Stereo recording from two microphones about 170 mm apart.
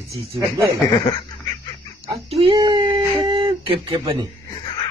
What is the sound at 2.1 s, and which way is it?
Speech, 35° right (ahead or behind).